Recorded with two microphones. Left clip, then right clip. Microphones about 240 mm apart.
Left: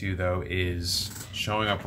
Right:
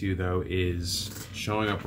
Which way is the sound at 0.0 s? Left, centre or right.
Centre.